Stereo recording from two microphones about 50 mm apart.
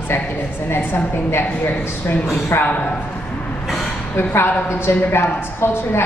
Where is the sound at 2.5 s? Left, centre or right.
Left.